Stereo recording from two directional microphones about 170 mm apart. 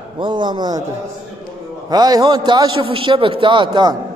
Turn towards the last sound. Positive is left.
turn(degrees=-25)  # may be behind; listen again after turning